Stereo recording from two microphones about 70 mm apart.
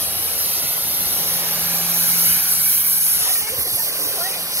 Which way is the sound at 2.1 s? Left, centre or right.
Right.